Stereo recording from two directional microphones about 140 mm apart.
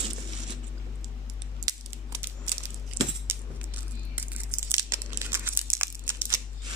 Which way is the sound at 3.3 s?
15° right (ahead or behind).